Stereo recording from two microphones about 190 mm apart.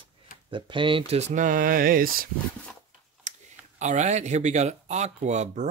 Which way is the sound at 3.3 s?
40° right (ahead or behind).